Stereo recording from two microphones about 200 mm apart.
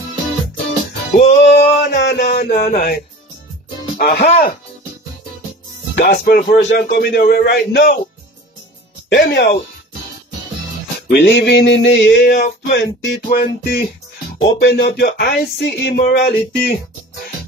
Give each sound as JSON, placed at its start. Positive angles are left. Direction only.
{"t": 1.1, "sound": "music", "side_deg": 35}
{"t": 2.1, "sound": "speech", "side_deg": 40}
{"t": 2.5, "sound": "a man's voice", "side_deg": 50}
{"t": 4.0, "sound": "a man's voice", "side_deg": 50}
{"t": 5.9, "sound": "a man's voice", "side_deg": 50}
{"t": 9.1, "sound": "music", "side_deg": 60}
{"t": 11.1, "sound": "a man's voice", "side_deg": 50}
{"t": 14.4, "sound": "music", "side_deg": 55}